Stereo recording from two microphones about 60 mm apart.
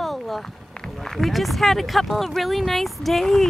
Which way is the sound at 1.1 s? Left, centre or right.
Centre.